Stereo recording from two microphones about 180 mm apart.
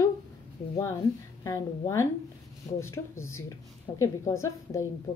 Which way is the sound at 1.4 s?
15° left (ahead or behind).